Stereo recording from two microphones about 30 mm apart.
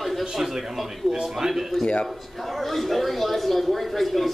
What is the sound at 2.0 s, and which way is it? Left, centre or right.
Speech, centre.